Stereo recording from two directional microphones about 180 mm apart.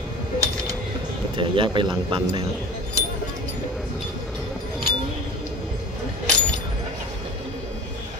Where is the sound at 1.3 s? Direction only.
30° right (ahead or behind).